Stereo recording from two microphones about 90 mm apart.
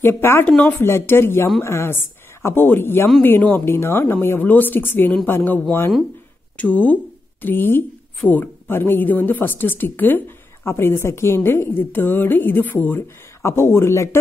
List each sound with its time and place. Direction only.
0.0 s a woman's voice: 25° left (ahead or behind)